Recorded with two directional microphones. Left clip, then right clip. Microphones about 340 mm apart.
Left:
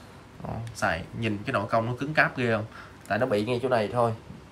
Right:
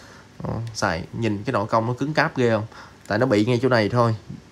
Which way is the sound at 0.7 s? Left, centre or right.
Centre.